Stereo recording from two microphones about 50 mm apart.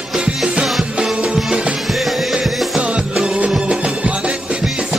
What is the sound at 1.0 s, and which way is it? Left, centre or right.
Music, centre.